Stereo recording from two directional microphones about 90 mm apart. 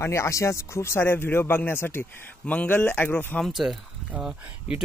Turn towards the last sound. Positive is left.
turn(degrees=-10)  # may be behind; listen again after turning